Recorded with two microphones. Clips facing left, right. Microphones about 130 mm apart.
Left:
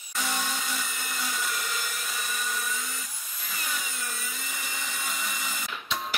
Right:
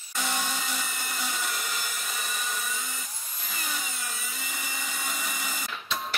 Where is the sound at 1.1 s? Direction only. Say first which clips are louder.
Left 1 dB; 10° right (ahead or behind).